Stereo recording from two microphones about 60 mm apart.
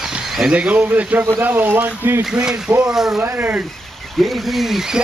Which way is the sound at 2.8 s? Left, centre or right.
Centre.